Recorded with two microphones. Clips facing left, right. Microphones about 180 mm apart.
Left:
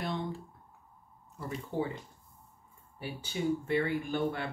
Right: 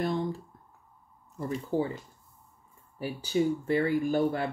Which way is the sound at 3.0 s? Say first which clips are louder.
Right 8 dB; 35° right (ahead or behind).